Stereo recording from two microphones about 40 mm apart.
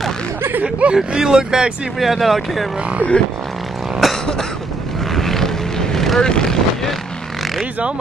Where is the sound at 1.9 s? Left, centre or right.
Centre.